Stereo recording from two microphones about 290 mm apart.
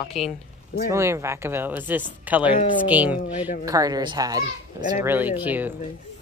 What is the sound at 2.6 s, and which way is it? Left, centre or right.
Speech, left.